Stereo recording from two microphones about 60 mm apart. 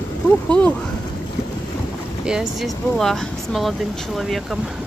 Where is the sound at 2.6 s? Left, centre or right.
Centre.